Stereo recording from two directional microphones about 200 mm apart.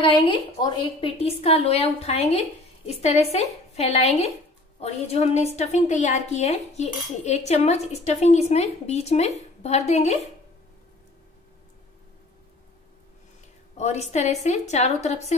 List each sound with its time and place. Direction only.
0.0 s a woman's voice: 25° left (ahead or behind)
13.7 s a woman's voice: 35° left (ahead or behind)